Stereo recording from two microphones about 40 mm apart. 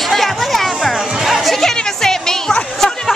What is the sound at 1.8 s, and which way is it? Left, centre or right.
Music, centre.